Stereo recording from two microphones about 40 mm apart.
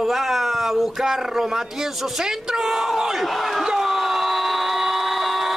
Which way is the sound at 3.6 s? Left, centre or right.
Centre.